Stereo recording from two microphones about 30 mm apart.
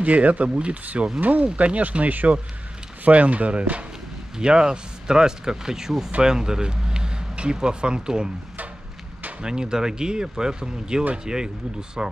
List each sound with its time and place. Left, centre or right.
0.0 s speech: right
3.1 s speech: right
4.4 s speech: right
9.4 s speech: right